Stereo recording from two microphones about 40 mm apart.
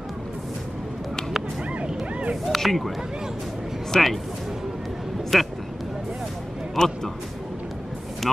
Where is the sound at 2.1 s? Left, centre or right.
Right.